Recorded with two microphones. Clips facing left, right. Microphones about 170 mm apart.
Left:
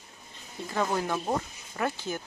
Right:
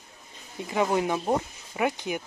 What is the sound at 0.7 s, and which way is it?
Speech, 15° right (ahead or behind).